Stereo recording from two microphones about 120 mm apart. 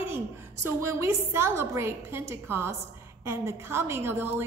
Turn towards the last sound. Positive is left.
turn(degrees=-20)  # may be behind; listen again after turning